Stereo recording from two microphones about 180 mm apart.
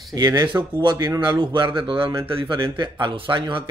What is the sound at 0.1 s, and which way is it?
Speech, 20° right (ahead or behind).